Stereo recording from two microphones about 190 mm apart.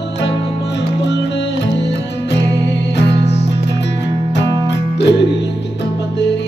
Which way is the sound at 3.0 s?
65° left (ahead or behind).